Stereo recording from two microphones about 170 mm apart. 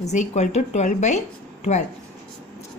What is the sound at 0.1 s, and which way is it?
A woman's voice, 45° left (ahead or behind).